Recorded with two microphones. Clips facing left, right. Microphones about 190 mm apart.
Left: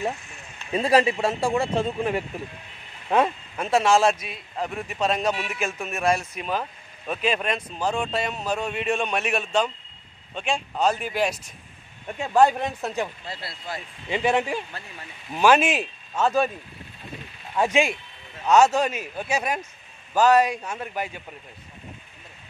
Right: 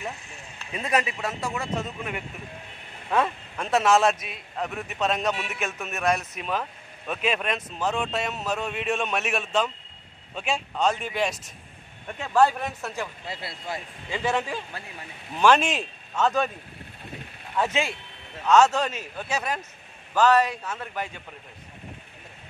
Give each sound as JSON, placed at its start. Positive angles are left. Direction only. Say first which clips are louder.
{"t": 0.7, "sound": "speech", "louder": "left 7 dB", "side_deg": 30}
{"t": 3.1, "sound": "speech", "louder": "left 3 dB", "side_deg": 20}
{"t": 3.5, "sound": "speech", "louder": "left 1 dB", "side_deg": 0}
{"t": 12.2, "sound": "speech", "louder": "left 2 dB", "side_deg": 15}
{"t": 13.3, "sound": "speech", "louder": "right 1 dB", "side_deg": -20}
{"t": 14.0, "sound": "speech", "louder": "left 4 dB", "side_deg": 15}
{"t": 17.6, "sound": "speech", "louder": "left 4 dB", "side_deg": 15}